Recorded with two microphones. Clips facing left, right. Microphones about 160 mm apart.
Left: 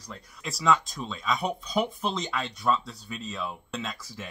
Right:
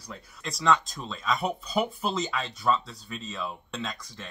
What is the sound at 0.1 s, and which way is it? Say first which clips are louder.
Speech: even; 5° left (ahead or behind).